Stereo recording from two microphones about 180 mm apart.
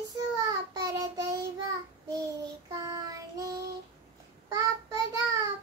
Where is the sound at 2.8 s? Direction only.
20° right (ahead or behind).